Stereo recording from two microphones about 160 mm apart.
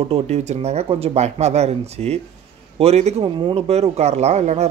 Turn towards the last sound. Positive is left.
turn(degrees=-45)  # may be behind; listen again after turning